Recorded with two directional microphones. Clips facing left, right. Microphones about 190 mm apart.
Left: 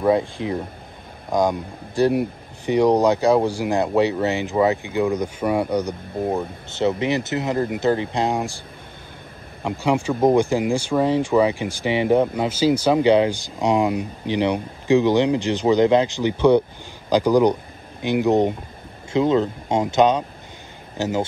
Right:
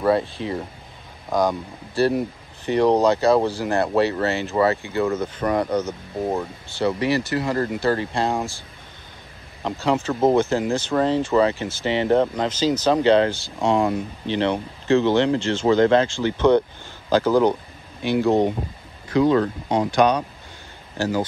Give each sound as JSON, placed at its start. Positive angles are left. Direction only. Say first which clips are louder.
{"t": 0.0, "sound": "speech", "louder": "left 1 dB", "side_deg": 15}